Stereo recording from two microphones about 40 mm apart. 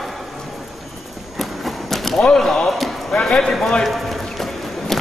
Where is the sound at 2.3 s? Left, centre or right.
Centre.